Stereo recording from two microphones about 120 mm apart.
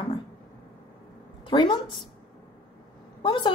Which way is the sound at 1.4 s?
40° left (ahead or behind).